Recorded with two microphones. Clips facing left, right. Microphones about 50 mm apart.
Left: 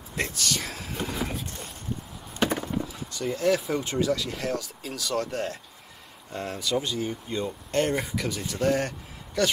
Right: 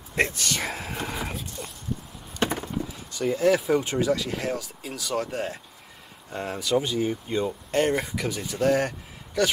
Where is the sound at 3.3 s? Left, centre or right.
Centre.